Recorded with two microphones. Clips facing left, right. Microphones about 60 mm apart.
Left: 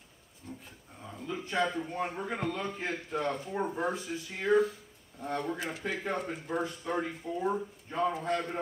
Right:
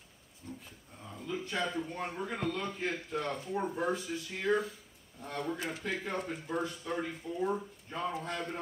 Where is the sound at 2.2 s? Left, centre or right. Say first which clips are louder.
Left 1 dB; centre.